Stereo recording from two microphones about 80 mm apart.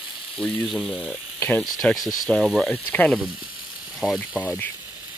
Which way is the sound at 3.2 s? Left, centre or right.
Centre.